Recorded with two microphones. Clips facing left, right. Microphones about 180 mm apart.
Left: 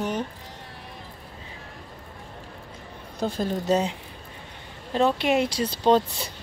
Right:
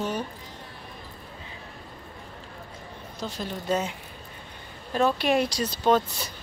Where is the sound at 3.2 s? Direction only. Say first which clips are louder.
Left 7 dB; 55° left (ahead or behind).